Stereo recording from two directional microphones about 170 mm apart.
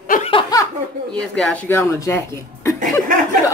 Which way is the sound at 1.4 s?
5° left (ahead or behind).